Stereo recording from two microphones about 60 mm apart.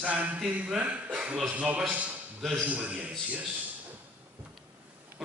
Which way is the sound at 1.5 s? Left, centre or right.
Right.